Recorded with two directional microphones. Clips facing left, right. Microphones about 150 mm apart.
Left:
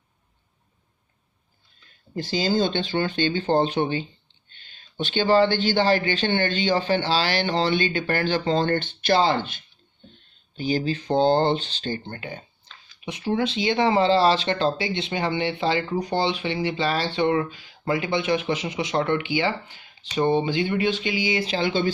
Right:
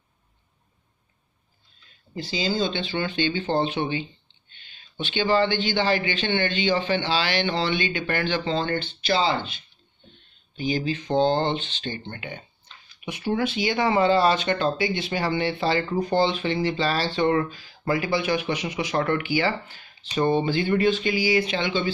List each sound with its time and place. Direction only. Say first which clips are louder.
2.1 s speech: left 3 dB; 45° left (ahead or behind)
10.5 s speech: left 1 dB; 40° left (ahead or behind)
13.0 s speech: left 1 dB; 25° left (ahead or behind)